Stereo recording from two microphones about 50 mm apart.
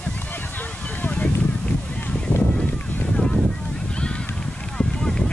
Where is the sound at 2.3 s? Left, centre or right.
Left.